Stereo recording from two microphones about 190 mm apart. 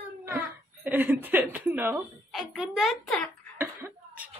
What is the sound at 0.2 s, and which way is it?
A child's voice, 10° right (ahead or behind).